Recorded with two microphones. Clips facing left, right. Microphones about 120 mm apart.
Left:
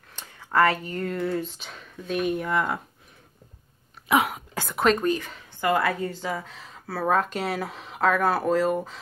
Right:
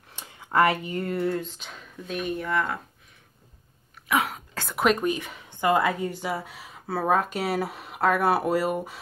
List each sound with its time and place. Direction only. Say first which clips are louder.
0.1 s speech: even; 15° right (ahead or behind)
1.3 s speech: left 1 dB; centre (ahead or behind)
2.4 s speech: left 1 dB; 15° left (ahead or behind)
4.3 s a sound: left 3 dB; 10° left (ahead or behind)
4.7 s speech: left 1 dB; 5° right (ahead or behind)
5.0 s a woman's voice: left 2 dB; 15° right (ahead or behind)